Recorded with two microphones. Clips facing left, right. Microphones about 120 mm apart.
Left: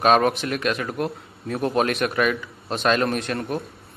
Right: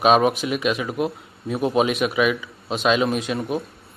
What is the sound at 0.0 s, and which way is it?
A man's voice, 10° right (ahead or behind).